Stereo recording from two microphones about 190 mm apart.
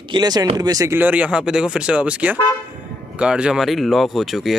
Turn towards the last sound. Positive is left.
turn(degrees=0)  # may be behind; listen again after turning